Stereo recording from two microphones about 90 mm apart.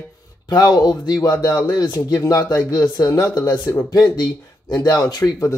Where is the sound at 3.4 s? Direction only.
25° left (ahead or behind).